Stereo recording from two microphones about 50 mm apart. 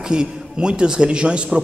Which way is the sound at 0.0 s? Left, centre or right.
Centre.